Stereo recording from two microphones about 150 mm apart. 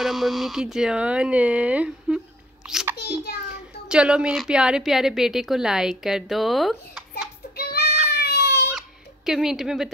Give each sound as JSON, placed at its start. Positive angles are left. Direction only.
{"t": 0.0, "sound": "a woman's voice", "side_deg": 0}
{"t": 7.5, "sound": "child singing", "side_deg": 90}
{"t": 8.1, "sound": "baby cry", "side_deg": 90}
{"t": 8.7, "sound": "a sound", "side_deg": -5}